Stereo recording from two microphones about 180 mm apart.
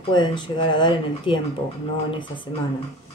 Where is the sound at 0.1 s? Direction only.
25° left (ahead or behind).